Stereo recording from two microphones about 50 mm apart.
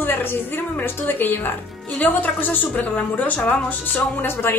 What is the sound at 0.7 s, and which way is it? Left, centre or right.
A woman's voice, left.